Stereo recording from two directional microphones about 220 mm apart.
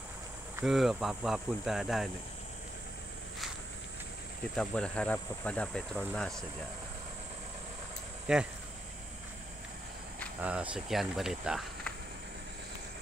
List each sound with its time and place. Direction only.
0.6 s speech: centre (ahead or behind)
4.6 s speech: 5° left (ahead or behind)
8.3 s speech: 5° right (ahead or behind)
10.4 s speech: 5° right (ahead or behind)